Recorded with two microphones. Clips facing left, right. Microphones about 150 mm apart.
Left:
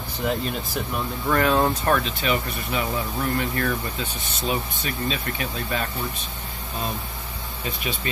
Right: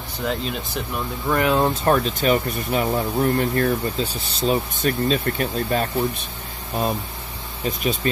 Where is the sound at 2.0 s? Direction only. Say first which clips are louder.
Right 5 dB; 40° right (ahead or behind).